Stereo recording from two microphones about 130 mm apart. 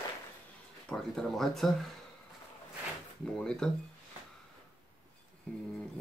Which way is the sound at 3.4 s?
5° left (ahead or behind).